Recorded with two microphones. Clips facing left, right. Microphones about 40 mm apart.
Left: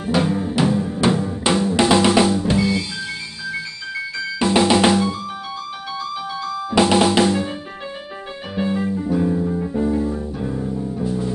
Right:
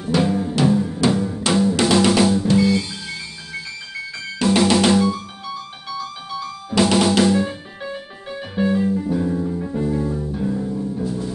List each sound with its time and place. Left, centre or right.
0.2 s music: left
1.0 s drum: centre
4.4 s drum: centre
6.7 s drum: centre
7.2 s music: left
8.7 s music: left
9.8 s music: centre